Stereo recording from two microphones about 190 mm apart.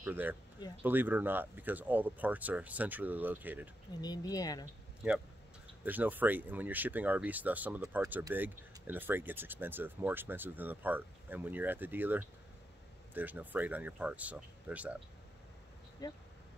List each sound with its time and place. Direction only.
0.0 s speech: 10° right (ahead or behind)
4.0 s speech: 20° left (ahead or behind)
5.9 s speech: 10° right (ahead or behind)
16.0 s speech: 20° left (ahead or behind)